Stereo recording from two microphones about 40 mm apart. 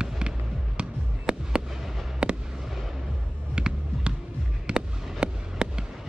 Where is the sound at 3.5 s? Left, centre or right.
Right.